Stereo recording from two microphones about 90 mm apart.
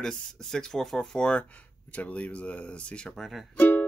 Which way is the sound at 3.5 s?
20° left (ahead or behind).